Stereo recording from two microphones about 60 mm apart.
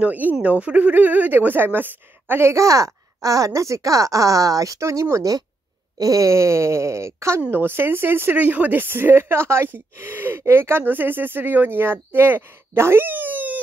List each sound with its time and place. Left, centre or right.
0.0 s speech: right
2.5 s speech: right
5.9 s speech: right
7.5 s speech: right